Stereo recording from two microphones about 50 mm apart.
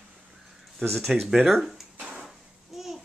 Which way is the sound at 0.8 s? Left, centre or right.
Centre.